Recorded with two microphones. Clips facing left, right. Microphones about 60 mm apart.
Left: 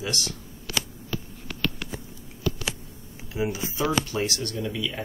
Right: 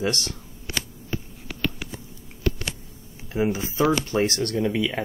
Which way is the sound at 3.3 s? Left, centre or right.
Right.